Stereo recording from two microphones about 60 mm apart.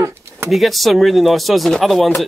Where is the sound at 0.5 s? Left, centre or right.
Centre.